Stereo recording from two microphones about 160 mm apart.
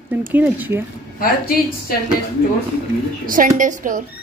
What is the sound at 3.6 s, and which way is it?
Speech, 55° right (ahead or behind).